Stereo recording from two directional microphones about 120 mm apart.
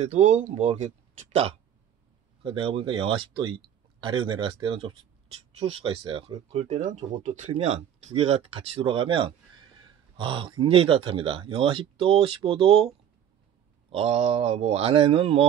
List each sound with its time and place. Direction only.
0.0 s speech: 75° right (ahead or behind)
2.4 s speech: 45° right (ahead or behind)
6.5 s speech: 65° right (ahead or behind); by 12.8 s 50° right (ahead or behind)
13.8 s speech: 55° right (ahead or behind)